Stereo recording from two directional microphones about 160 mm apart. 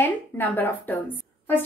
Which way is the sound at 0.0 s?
10° left (ahead or behind).